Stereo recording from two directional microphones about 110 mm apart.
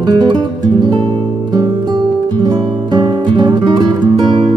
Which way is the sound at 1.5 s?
40° right (ahead or behind).